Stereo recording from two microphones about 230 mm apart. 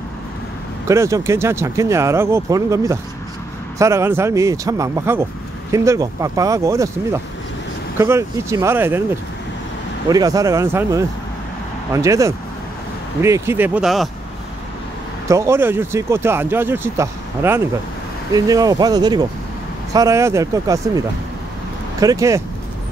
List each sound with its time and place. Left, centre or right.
0.8 s speech: centre
10.0 s speech: centre
15.2 s speech: centre
22.0 s speech: centre